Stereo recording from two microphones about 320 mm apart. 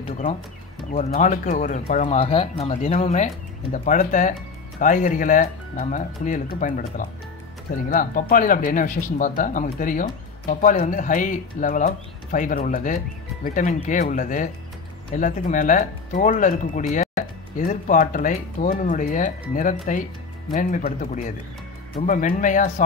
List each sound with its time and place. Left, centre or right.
0.9 s speech: left